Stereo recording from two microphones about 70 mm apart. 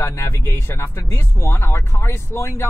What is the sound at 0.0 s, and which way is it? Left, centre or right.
Speech, left.